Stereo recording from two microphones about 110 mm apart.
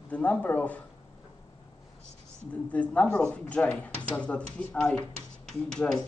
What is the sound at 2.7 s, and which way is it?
A woman's voice, 10° left (ahead or behind).